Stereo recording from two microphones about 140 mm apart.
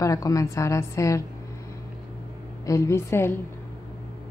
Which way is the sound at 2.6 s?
20° left (ahead or behind).